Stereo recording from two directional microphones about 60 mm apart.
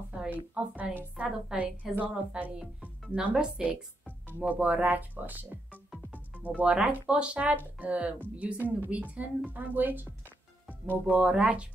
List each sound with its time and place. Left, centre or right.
0.7 s a woman's voice: centre
6.6 s speech: centre
10.7 s speech: right